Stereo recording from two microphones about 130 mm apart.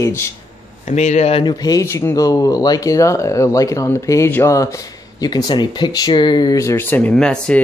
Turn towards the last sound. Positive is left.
turn(degrees=5)  # may be behind; listen again after turning